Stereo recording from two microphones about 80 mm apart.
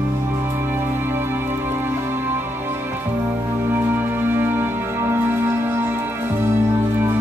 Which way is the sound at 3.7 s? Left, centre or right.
Right.